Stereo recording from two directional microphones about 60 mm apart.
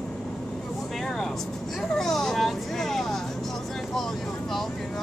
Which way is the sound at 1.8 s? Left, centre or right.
Centre.